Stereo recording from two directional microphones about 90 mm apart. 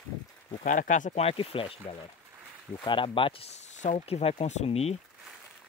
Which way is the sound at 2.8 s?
70° left (ahead or behind).